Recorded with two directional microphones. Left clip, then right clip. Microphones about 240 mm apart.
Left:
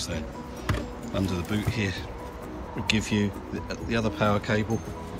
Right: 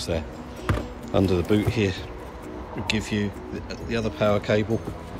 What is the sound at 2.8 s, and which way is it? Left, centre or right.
Speech, centre.